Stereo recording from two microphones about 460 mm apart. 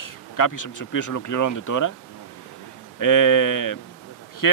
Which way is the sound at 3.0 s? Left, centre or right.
Left.